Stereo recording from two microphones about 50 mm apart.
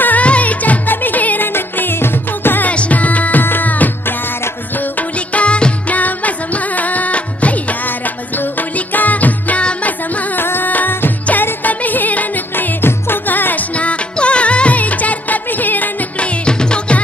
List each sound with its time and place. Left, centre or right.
0.0 s music: left
2.7 s music: left
10.4 s music: left
13.7 s music: left